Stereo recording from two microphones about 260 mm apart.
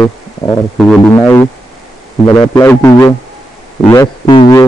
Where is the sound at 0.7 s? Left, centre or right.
Centre.